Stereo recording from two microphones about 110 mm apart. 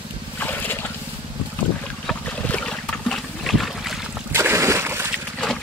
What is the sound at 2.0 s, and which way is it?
Trickle, 10° left (ahead or behind).